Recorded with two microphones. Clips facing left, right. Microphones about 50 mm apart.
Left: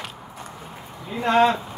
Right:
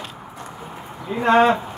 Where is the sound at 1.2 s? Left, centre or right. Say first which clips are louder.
Right 3 dB; right.